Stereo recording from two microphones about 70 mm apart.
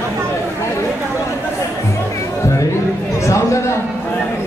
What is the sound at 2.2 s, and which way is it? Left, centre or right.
Music, left.